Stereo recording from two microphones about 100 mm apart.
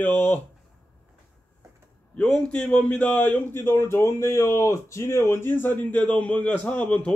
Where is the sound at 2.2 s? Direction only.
10° left (ahead or behind).